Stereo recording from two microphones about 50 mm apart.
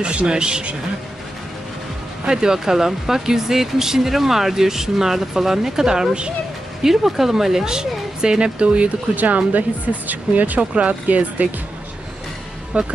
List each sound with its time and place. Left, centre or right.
0.0 s speech: centre
2.2 s speech: centre; by 11.4 s right
12.7 s speech: right